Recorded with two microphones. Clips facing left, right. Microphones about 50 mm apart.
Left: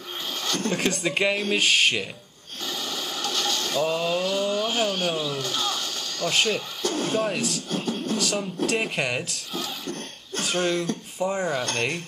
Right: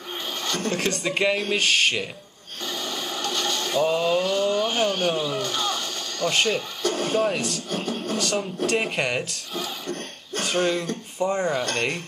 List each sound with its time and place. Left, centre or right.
0.7 s speech: centre
2.6 s a sound: centre
6.8 s speech: right
7.2 s speech: centre
10.5 s speech: centre
11.1 s speech: centre
11.7 s speech: centre